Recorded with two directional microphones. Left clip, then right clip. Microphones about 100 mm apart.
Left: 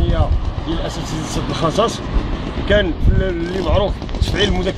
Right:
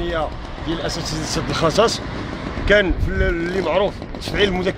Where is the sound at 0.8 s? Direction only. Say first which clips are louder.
Even; 15° right (ahead or behind).